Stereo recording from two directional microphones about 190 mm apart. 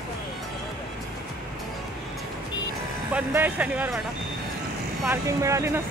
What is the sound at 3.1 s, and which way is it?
Speech, 10° right (ahead or behind).